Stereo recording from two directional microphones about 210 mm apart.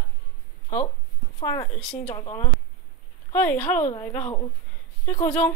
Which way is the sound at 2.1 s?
20° left (ahead or behind).